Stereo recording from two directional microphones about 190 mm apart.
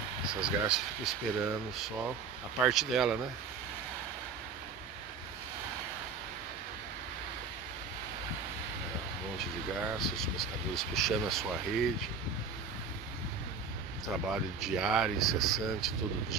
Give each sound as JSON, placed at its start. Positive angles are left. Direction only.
{"t": 0.3, "sound": "speech", "side_deg": -5}
{"t": 9.9, "sound": "speech", "side_deg": 0}
{"t": 14.6, "sound": "speech", "side_deg": 0}